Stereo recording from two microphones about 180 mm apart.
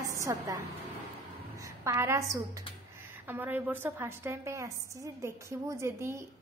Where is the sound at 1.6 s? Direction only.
15° right (ahead or behind).